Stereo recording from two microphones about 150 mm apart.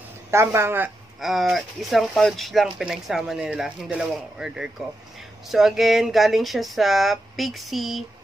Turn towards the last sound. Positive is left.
turn(degrees=0)  # may be behind; listen again after turning